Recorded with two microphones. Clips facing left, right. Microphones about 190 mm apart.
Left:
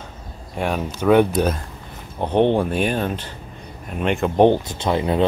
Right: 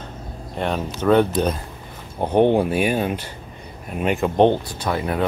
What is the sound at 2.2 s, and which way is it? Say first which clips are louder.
A man's voice: right 1 dB; 10° right (ahead or behind).